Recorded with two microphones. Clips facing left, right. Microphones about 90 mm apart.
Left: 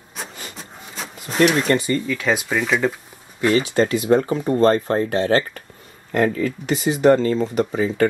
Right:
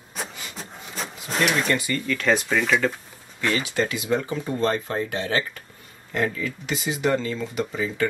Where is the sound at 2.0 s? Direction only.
5° left (ahead or behind).